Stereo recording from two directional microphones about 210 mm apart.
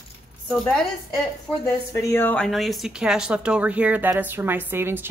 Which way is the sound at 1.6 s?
15° left (ahead or behind).